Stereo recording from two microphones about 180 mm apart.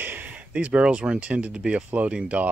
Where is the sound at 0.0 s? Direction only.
10° right (ahead or behind).